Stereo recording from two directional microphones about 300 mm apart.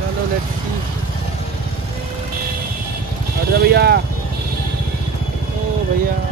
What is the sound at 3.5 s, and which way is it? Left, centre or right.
Speech, right.